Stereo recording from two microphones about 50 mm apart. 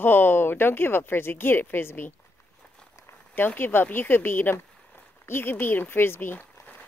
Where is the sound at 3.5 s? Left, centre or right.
Left.